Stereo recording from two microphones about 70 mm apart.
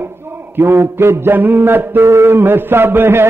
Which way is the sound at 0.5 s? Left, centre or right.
Right.